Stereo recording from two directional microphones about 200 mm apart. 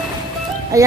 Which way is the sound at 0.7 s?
15° right (ahead or behind).